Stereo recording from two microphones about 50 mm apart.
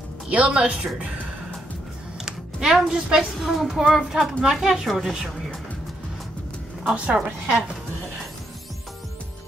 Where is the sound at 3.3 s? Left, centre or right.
Centre.